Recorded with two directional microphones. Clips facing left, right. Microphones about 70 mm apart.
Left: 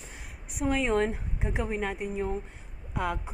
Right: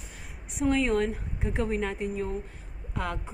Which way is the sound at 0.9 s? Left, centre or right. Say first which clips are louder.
Even; left.